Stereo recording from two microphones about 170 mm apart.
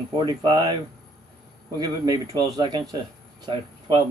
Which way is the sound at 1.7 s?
20° right (ahead or behind).